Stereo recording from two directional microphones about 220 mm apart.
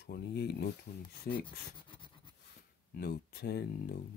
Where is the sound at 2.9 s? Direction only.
45° left (ahead or behind).